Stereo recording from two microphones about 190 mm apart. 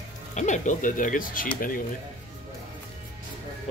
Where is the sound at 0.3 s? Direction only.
40° left (ahead or behind).